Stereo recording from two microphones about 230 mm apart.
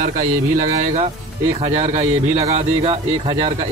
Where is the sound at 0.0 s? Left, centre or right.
Right.